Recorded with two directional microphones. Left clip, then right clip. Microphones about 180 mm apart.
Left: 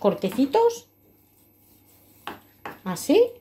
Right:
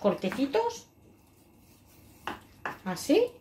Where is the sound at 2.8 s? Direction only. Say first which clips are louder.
Left 6 dB; 45° left (ahead or behind).